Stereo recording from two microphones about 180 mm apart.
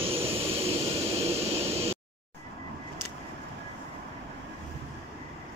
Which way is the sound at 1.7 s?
35° right (ahead or behind).